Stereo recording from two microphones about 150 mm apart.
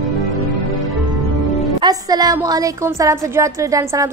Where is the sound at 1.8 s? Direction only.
25° right (ahead or behind).